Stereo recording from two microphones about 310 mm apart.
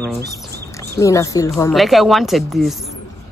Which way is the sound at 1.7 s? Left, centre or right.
Centre.